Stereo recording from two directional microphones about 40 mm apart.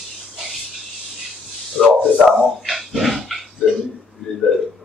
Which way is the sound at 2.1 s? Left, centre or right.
Centre.